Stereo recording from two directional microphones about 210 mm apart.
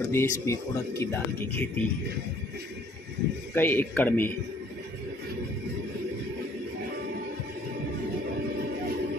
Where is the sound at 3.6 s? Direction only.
10° left (ahead or behind).